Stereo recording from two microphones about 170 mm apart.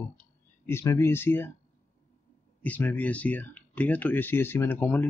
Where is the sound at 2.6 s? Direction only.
10° left (ahead or behind).